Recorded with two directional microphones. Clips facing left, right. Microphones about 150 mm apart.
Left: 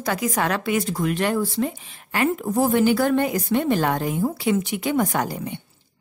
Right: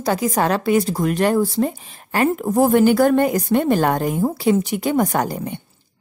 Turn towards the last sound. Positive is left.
turn(degrees=-50)  # may be behind; listen again after turning